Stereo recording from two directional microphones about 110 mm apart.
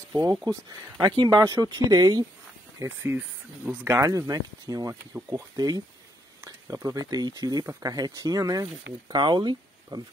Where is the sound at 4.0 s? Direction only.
30° right (ahead or behind).